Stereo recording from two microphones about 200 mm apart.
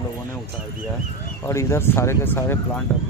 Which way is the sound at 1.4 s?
15° left (ahead or behind).